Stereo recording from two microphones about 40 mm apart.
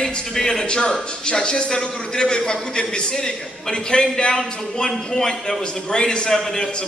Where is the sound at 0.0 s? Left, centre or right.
Centre.